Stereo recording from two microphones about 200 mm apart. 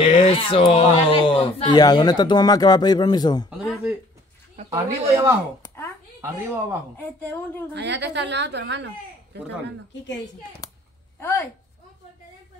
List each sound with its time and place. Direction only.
0.0 s speech: 25° left (ahead or behind)
3.4 s a sound: 5° right (ahead or behind)
4.6 s speech: 15° right (ahead or behind)
7.0 s a woman's voice: 10° left (ahead or behind)
7.7 s a woman's voice: 60° right (ahead or behind)
10.6 s a sound: 20° left (ahead or behind)
11.1 s speech: 10° left (ahead or behind)